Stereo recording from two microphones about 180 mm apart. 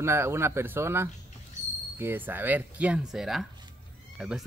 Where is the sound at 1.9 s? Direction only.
10° right (ahead or behind).